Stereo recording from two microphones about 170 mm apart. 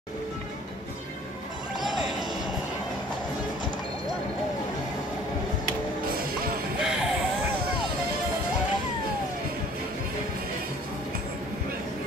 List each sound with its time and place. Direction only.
6.1 s music: 60° right (ahead or behind)
6.8 s music: centre (ahead or behind)